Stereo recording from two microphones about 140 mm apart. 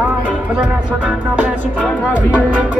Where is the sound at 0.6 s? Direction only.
10° right (ahead or behind).